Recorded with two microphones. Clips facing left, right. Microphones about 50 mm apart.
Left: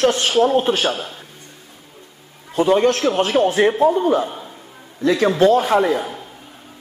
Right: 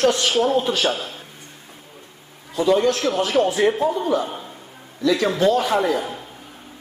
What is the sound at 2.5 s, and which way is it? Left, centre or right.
A woman's voice, left.